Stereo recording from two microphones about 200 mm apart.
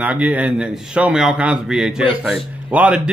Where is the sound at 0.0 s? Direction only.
5° right (ahead or behind).